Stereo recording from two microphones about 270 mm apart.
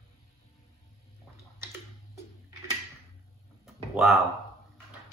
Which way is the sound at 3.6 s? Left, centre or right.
Centre.